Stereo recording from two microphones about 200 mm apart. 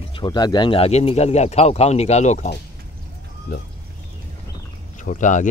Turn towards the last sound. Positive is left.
turn(degrees=40)  # may be behind; listen again after turning